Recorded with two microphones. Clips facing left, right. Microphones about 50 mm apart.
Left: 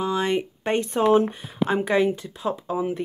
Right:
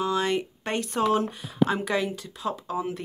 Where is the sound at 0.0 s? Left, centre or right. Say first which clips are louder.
Left 2 dB; centre.